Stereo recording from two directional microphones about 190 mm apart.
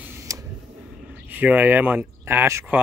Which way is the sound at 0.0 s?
15° right (ahead or behind).